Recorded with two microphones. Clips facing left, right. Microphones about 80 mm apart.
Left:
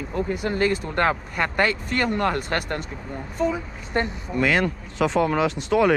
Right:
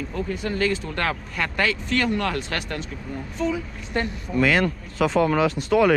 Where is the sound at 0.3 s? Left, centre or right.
Centre.